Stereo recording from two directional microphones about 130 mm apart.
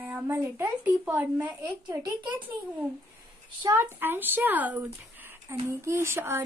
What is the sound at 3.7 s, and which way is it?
Speech, 15° right (ahead or behind).